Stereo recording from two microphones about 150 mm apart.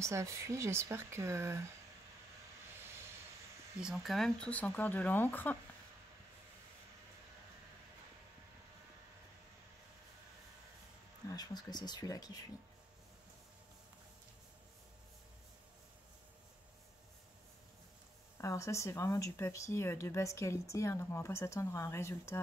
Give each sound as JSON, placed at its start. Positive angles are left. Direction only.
{"t": 0.0, "sound": "speech", "side_deg": -20}
{"t": 3.8, "sound": "speech", "side_deg": 0}
{"t": 11.2, "sound": "speech", "side_deg": 25}
{"t": 18.4, "sound": "speech", "side_deg": 20}